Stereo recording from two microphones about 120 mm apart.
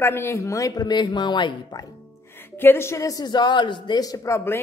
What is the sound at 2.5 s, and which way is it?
Speech, 20° left (ahead or behind).